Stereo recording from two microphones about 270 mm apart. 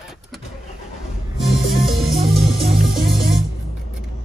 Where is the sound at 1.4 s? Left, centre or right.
Centre.